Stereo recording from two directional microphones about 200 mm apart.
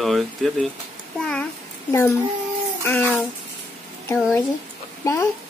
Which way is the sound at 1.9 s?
15° left (ahead or behind).